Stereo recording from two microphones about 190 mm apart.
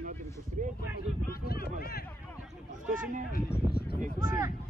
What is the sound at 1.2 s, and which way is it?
Speech, 50° left (ahead or behind).